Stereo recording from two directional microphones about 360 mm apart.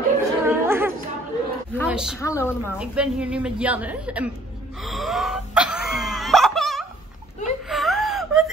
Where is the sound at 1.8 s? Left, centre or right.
Centre.